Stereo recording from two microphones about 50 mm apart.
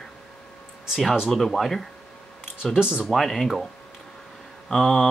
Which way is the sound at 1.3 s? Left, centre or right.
Centre.